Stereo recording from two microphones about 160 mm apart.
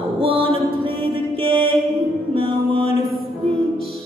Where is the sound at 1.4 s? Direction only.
30° right (ahead or behind).